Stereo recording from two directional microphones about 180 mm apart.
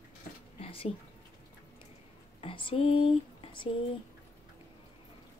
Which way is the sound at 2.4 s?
30° left (ahead or behind).